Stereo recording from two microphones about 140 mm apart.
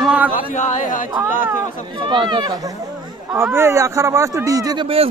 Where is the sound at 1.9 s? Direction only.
35° right (ahead or behind).